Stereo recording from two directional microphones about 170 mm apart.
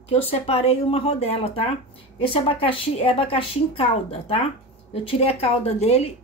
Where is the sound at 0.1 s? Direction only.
35° left (ahead or behind).